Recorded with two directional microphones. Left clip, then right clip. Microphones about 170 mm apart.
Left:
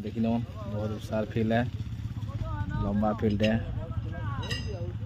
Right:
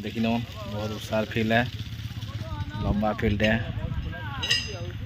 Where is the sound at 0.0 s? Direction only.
Centre (ahead or behind).